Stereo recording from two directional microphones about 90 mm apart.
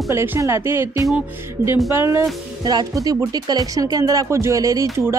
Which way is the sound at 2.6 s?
45° right (ahead or behind).